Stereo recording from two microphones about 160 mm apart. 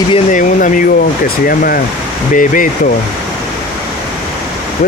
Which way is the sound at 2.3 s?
55° left (ahead or behind).